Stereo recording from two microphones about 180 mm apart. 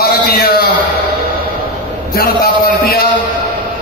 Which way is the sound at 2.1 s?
55° left (ahead or behind).